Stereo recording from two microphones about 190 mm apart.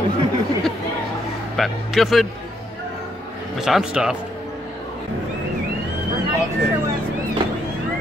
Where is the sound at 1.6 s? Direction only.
Centre (ahead or behind).